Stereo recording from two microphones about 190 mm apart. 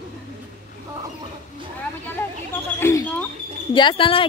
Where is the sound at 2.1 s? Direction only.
10° left (ahead or behind).